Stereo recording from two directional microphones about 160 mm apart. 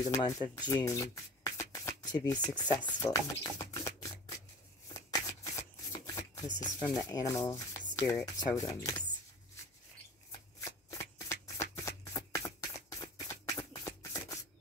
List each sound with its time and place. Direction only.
0.0 s speech: 25° left (ahead or behind)
0.6 s a sound: 25° left (ahead or behind)
2.5 s speech: 25° left (ahead or behind)
5.1 s shuffling cards: 20° left (ahead or behind)
6.7 s speech: 25° left (ahead or behind)
10.9 s shuffling cards: 20° left (ahead or behind)
13.0 s a sound: 20° left (ahead or behind)